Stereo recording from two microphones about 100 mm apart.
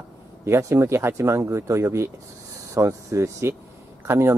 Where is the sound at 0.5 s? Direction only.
30° right (ahead or behind).